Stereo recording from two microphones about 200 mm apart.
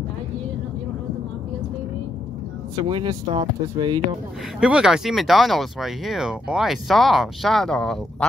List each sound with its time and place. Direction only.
2.8 s speech: 25° right (ahead or behind)
4.6 s speech: 5° right (ahead or behind)